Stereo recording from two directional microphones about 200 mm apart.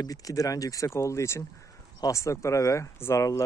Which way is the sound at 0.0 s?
15° left (ahead or behind).